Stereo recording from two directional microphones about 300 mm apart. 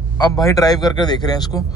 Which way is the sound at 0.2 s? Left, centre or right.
Centre.